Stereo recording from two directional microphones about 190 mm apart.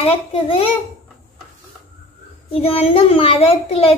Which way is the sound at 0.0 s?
30° left (ahead or behind).